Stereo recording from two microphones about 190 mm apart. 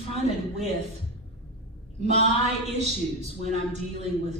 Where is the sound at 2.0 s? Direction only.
35° right (ahead or behind).